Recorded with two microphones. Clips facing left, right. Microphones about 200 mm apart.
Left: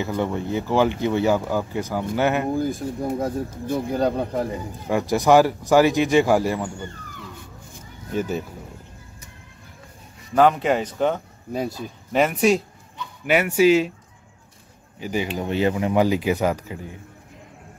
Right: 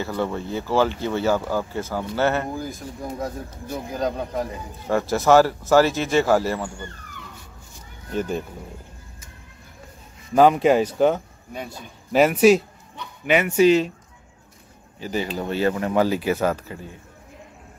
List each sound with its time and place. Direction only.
0.0 s speech: 15° left (ahead or behind)
2.5 s speech: 30° left (ahead or behind)
4.8 s speech: 15° left (ahead or behind)
8.1 s speech: 5° left (ahead or behind)
10.3 s speech: 10° right (ahead or behind)
11.5 s speech: 40° left (ahead or behind)
12.1 s speech: 5° right (ahead or behind)
13.3 s speech: 5° left (ahead or behind)
15.0 s speech: 15° left (ahead or behind)